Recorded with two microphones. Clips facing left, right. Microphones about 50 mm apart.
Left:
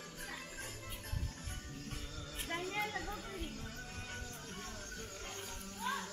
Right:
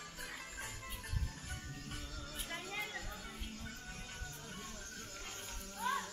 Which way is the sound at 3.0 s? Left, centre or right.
Centre.